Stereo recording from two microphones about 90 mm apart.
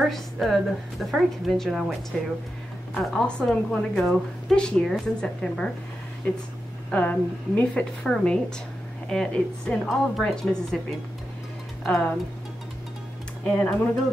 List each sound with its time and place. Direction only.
0.0 s a woman's voice: centre (ahead or behind)
6.9 s a woman's voice: 15° left (ahead or behind)
11.8 s speech: 5° left (ahead or behind)
13.4 s a woman's voice: 15° left (ahead or behind)